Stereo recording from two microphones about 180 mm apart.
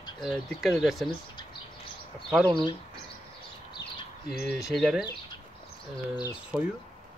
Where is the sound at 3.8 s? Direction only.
25° left (ahead or behind).